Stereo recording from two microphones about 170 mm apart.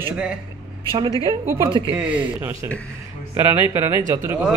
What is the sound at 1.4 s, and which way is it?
Speech, 15° right (ahead or behind).